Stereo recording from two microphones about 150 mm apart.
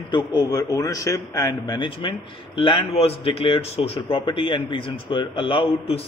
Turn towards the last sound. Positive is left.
turn(degrees=40)  # may be behind; listen again after turning